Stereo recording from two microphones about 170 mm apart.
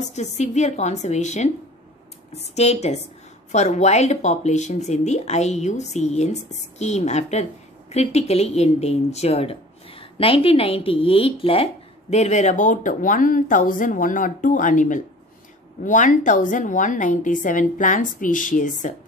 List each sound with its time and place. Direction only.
0.0 s a woman's voice: 40° left (ahead or behind)